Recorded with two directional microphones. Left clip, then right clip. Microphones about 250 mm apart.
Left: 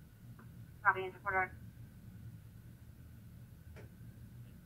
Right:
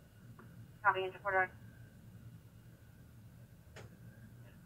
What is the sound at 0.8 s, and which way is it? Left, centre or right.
Speech, centre.